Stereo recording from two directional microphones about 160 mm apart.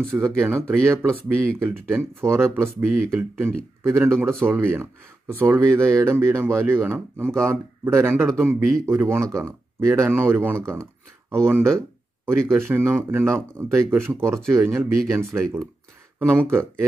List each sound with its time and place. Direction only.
0.2 s speech: 15° right (ahead or behind)